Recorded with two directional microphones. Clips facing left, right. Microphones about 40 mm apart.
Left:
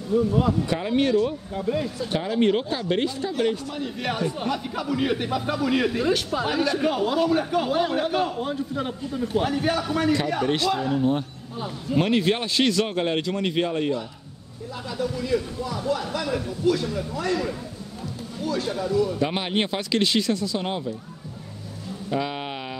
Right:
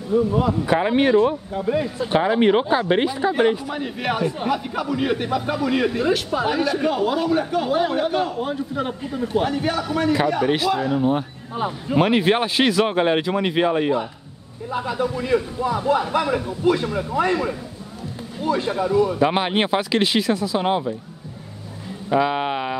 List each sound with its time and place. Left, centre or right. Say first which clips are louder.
0.1 s a man's voice: right 3 dB; centre
0.7 s a man's voice: right 5 dB; right; by 11.2 s centre
11.5 s speech: right 4 dB; right
12.0 s a man's voice: right 5 dB; centre
22.1 s a man's voice: right 8 dB; right